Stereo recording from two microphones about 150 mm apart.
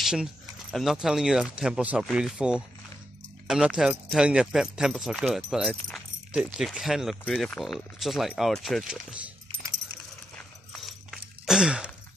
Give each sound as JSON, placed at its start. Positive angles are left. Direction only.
{"t": 0.0, "sound": "speech", "side_deg": -5}
{"t": 5.9, "sound": "keys jangling", "side_deg": 0}
{"t": 6.4, "sound": "speech", "side_deg": -5}
{"t": 10.3, "sound": "a sound", "side_deg": 0}